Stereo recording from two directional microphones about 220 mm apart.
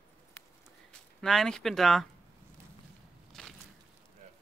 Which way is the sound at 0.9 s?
Centre (ahead or behind).